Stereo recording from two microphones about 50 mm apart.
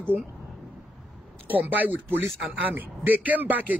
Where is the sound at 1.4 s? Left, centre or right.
Right.